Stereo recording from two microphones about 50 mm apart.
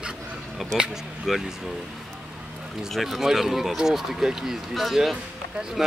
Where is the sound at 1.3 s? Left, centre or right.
Centre.